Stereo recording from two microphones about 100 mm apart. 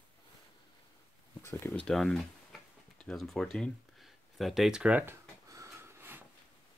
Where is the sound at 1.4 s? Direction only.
25° left (ahead or behind).